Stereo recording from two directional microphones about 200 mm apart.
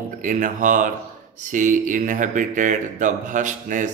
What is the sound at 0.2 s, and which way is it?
Speech, 40° right (ahead or behind).